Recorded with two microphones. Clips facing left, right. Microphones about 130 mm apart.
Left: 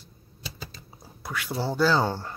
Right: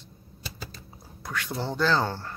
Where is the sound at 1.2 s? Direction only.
5° left (ahead or behind).